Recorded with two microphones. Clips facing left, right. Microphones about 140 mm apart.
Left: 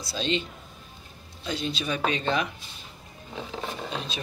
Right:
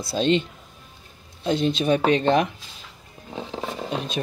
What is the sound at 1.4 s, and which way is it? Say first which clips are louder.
Speech: right 9 dB; 55° right (ahead or behind).